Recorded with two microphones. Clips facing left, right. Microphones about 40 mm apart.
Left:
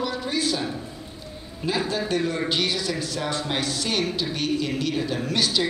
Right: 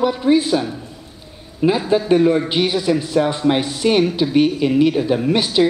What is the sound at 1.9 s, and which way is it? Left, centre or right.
Speech, right.